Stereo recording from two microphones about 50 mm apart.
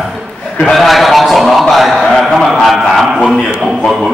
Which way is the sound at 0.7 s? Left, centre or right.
Centre.